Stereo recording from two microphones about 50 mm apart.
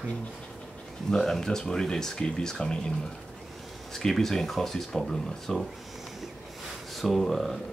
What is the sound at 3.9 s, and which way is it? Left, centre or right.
Speech, centre.